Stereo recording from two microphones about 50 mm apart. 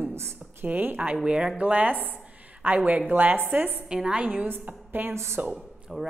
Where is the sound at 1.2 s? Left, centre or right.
Centre; by 3.4 s right.